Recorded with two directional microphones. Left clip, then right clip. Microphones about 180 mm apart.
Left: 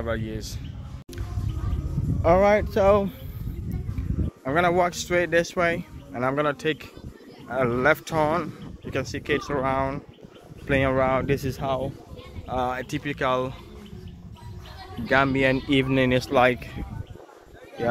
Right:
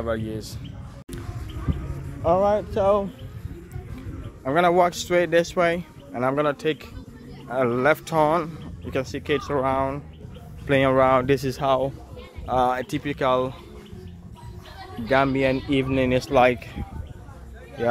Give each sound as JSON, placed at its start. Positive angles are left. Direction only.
{"t": 0.0, "sound": "speech", "side_deg": -5}
{"t": 2.2, "sound": "speech", "side_deg": 15}
{"t": 4.5, "sound": "speech", "side_deg": -10}
{"t": 10.7, "sound": "speech", "side_deg": -20}
{"t": 15.0, "sound": "speech", "side_deg": -5}